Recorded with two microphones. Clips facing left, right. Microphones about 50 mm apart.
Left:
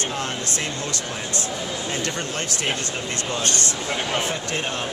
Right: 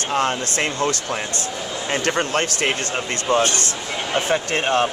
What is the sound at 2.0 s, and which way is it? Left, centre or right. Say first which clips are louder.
Speech: right 7 dB; right.